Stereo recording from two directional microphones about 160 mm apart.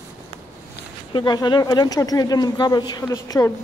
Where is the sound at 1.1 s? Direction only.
25° left (ahead or behind).